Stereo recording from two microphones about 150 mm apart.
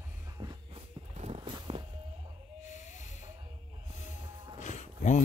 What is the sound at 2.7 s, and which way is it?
Hiss, 55° left (ahead or behind).